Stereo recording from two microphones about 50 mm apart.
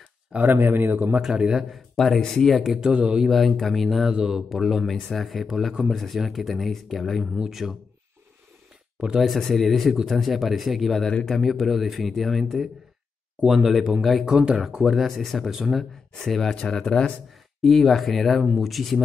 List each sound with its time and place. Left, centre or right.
0.4 s speech: right
1.3 s a man's voice: centre
1.6 s speech: centre
2.8 s a man's voice: centre
3.3 s speech: centre
4.1 s speech: centre
9.2 s speech: centre
13.4 s speech: centre
13.7 s speech: centre
14.7 s speech: centre
15.0 s speech: centre
16.2 s speech: centre
17.6 s speech: centre